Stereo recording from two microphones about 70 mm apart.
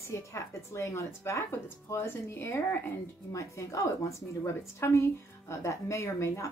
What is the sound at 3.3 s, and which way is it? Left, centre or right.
A woman's voice, left.